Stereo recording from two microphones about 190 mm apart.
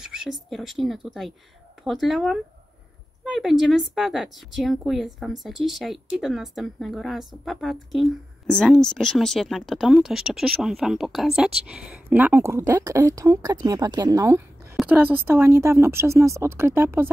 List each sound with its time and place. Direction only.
0.0 s a woman's voice: 5° right (ahead or behind)